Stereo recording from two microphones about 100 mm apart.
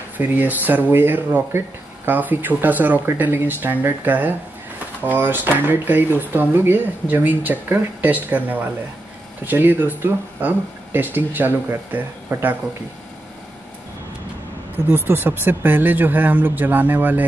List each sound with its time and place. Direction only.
0.2 s speech: 20° right (ahead or behind)
14.9 s speech: 20° right (ahead or behind)